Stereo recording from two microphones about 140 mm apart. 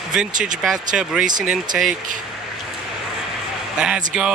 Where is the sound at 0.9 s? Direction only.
5° right (ahead or behind).